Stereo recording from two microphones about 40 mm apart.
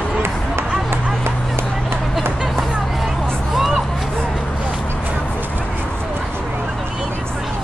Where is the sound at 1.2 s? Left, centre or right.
Right.